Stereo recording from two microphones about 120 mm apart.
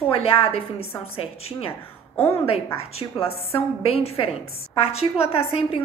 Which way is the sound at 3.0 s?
55° left (ahead or behind).